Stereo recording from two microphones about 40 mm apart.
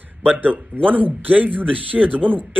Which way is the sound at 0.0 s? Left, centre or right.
Right.